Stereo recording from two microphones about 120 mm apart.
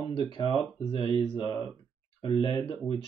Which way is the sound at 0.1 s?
40° left (ahead or behind).